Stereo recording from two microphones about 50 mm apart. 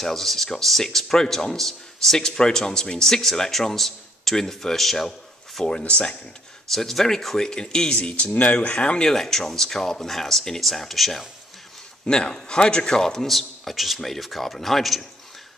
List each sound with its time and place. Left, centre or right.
0.0 s speech: centre
5.7 s speech: left
6.7 s speech: centre
8.0 s speech: left
9.1 s speech: centre
12.1 s speech: centre